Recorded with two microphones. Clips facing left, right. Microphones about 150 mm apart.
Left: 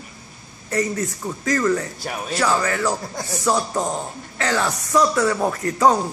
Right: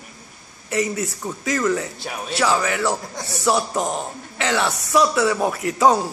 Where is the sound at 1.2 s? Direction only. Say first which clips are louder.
Left 1 dB; 5° right (ahead or behind).